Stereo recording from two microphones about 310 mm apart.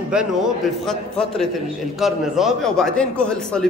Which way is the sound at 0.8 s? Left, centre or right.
Centre.